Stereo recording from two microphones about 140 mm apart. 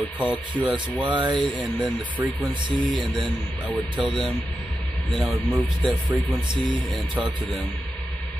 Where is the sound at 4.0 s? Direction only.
Centre (ahead or behind).